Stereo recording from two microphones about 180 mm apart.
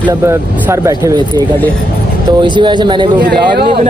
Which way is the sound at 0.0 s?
15° right (ahead or behind).